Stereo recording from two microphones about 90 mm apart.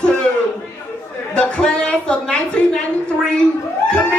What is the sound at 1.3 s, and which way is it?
A man's voice, 10° left (ahead or behind).